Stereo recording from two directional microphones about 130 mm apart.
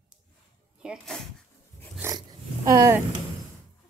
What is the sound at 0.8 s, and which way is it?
Speech, 5° right (ahead or behind).